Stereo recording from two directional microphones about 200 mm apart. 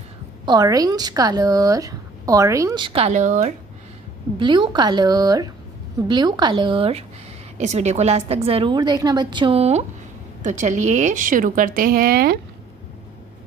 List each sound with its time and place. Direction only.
0.5 s speech: 20° right (ahead or behind); by 3.5 s 35° right (ahead or behind)
4.4 s a woman's voice: 25° right (ahead or behind); by 12.4 s 50° right (ahead or behind)